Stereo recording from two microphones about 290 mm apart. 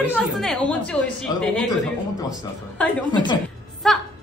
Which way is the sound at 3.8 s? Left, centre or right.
Centre.